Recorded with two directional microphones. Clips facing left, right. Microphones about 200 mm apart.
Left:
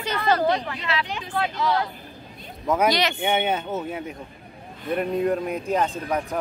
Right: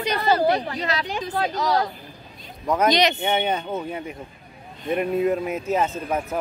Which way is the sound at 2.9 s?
20° right (ahead or behind).